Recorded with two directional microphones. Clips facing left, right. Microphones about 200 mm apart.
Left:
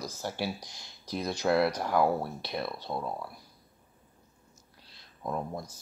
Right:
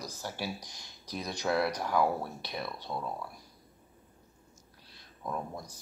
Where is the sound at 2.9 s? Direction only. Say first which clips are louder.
Left 2 dB; 35° left (ahead or behind).